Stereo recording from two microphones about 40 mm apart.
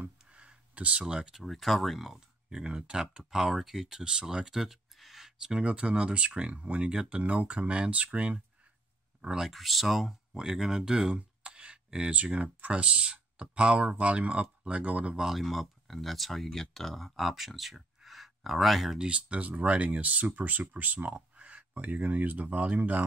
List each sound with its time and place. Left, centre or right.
0.3 s a sound: right
1.0 s speech: centre
1.4 s speech: centre
2.1 s speech: right
4.0 s speech: right
4.6 s speech: centre; by 8.4 s right
9.4 s speech: centre
10.3 s speech: centre
12.1 s speech: right
15.1 s speech: centre
15.4 s speech: centre
18.9 s speech: right